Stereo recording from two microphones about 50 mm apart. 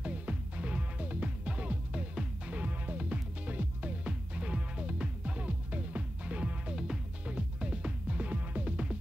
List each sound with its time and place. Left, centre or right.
0.0 s music: right
6.7 s music: centre